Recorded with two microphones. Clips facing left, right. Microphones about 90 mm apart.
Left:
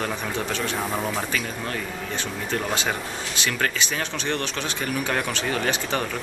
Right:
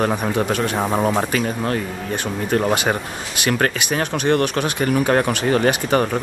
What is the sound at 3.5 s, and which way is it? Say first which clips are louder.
Speech: right 6 dB; 50° right (ahead or behind).